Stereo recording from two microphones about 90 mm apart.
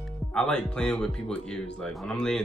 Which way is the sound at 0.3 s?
10° left (ahead or behind).